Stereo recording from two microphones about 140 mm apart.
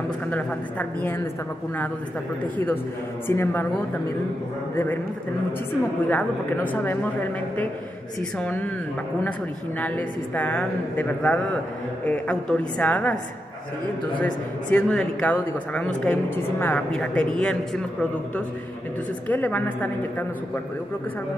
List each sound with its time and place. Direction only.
0.3 s speech: 15° left (ahead or behind)
2.4 s speech: 10° left (ahead or behind)
6.0 s speech: 10° left (ahead or behind)
9.8 s speech: 10° left (ahead or behind)
14.2 s speech: 5° left (ahead or behind)
19.2 s speech: 10° left (ahead or behind)